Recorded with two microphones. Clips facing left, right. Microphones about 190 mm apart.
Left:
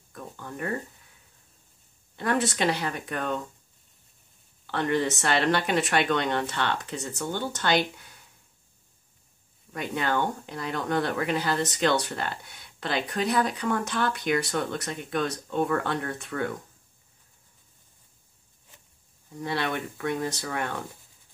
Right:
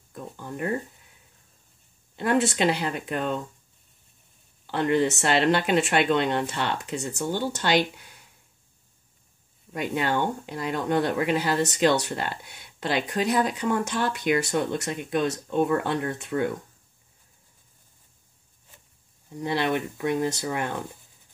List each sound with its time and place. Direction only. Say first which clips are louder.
0.1 s speech: right 3 dB; 20° right (ahead or behind)
2.1 s speech: right 3 dB; 25° right (ahead or behind)
4.6 s speech: right 3 dB; 20° right (ahead or behind)
9.7 s speech: right 2 dB; 20° right (ahead or behind)
19.4 s speech: right 4 dB; 15° right (ahead or behind)